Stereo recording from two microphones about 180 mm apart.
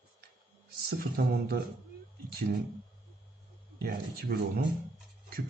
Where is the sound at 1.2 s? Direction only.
55° right (ahead or behind).